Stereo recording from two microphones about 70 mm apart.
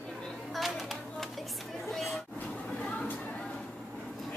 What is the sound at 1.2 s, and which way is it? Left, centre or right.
Children playing, centre.